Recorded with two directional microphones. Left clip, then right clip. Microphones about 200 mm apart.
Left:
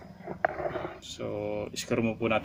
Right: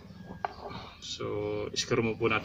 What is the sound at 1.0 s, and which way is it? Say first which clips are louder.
Speech: even; 35° left (ahead or behind).